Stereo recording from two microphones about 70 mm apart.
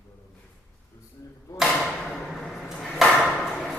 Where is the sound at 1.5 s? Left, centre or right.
Centre.